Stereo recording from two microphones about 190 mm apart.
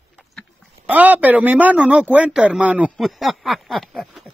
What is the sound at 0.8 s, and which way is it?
Speech, 10° right (ahead or behind).